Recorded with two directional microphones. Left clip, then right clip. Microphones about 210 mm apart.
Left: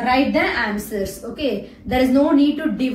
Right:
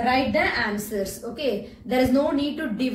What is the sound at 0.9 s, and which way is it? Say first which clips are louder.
A woman's voice: left 3 dB; 25° right (ahead or behind).